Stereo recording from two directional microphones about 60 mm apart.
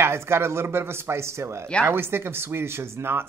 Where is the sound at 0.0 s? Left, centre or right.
Right.